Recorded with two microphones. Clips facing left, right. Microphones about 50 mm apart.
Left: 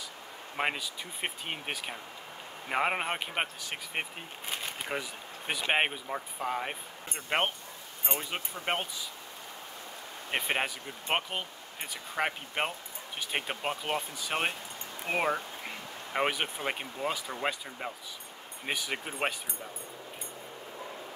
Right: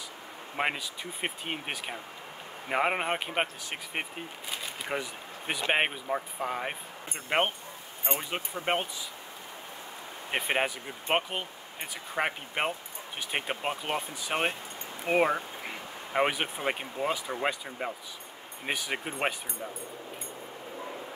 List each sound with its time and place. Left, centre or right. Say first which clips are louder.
0.6 s speech: right 1 dB; centre
8.1 s speech: right 2 dB; right
8.5 s speech: right 3 dB; centre
10.5 s speech: right 5 dB; centre